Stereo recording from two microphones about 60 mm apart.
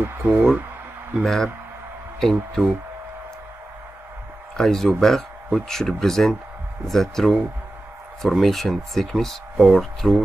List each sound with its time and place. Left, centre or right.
0.0 s speech: right
1.2 s speech: centre
4.6 s speech: centre